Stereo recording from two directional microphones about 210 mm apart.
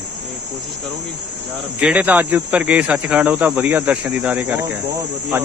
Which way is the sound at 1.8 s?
5° right (ahead or behind).